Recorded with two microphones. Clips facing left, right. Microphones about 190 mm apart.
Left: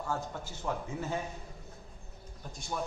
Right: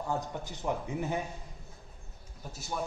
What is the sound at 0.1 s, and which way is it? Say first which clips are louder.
A man's voice: right 2 dB; 20° right (ahead or behind).